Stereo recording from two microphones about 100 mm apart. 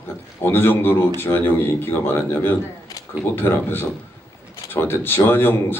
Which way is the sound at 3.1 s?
15° right (ahead or behind).